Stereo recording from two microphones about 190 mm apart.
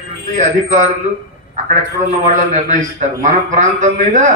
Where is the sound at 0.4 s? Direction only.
40° right (ahead or behind).